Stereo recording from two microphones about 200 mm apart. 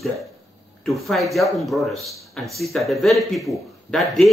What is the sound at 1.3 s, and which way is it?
Speech, centre (ahead or behind).